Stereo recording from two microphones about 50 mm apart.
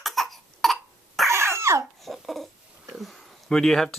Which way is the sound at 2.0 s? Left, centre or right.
Centre.